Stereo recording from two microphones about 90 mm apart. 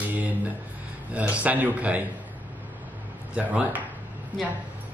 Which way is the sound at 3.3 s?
15° right (ahead or behind).